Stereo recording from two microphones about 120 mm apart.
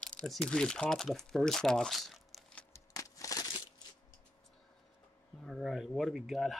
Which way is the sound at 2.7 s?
25° left (ahead or behind).